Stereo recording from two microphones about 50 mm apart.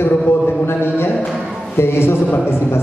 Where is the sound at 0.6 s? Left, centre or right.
Left.